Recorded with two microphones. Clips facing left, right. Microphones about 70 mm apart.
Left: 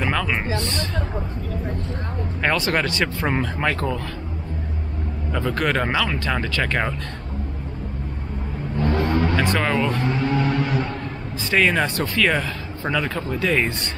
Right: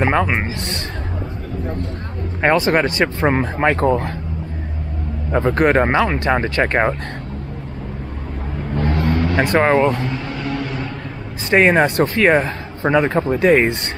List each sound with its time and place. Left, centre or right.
0.0 s speech: right
2.4 s speech: right
5.3 s speech: right
8.7 s vehicle: right
9.3 s speech: right
9.6 s speech: right
10.5 s a sound: centre
11.5 s speech: right